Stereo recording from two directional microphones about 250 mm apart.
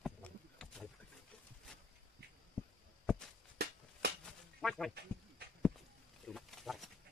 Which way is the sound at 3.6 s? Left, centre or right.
Right.